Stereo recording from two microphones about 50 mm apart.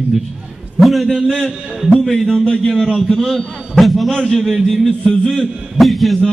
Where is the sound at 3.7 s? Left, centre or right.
Centre.